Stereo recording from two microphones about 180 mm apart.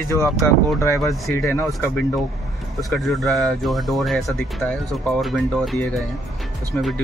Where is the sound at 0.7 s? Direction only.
15° left (ahead or behind).